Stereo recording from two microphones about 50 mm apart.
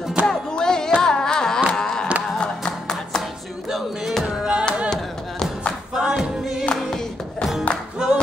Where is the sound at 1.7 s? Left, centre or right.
Centre.